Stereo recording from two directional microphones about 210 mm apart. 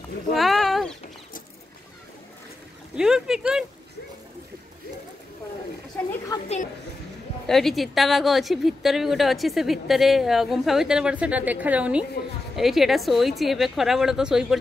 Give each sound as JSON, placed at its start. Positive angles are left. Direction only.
{"t": 0.3, "sound": "a sound", "side_deg": 0}
{"t": 3.0, "sound": "a woman's voice", "side_deg": -5}
{"t": 6.3, "sound": "a woman's voice", "side_deg": 20}
{"t": 7.4, "sound": "a woman's voice", "side_deg": 0}